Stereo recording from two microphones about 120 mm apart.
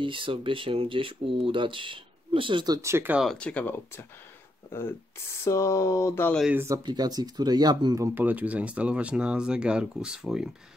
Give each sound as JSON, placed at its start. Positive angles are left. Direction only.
{"t": 0.0, "sound": "speech", "side_deg": -45}
{"t": 3.3, "sound": "speech", "side_deg": 10}
{"t": 6.5, "sound": "speech", "side_deg": -20}
{"t": 6.9, "sound": "speech", "side_deg": -35}
{"t": 8.1, "sound": "speech", "side_deg": -15}